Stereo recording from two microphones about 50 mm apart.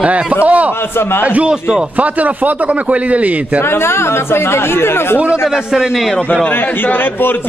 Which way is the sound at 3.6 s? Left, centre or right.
Left.